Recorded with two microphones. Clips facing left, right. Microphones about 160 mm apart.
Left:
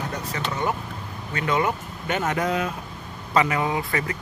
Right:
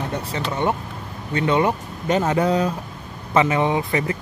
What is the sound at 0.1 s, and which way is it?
Speech, 30° right (ahead or behind).